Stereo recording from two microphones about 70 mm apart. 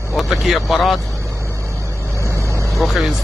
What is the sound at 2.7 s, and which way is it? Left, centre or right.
Speech, centre.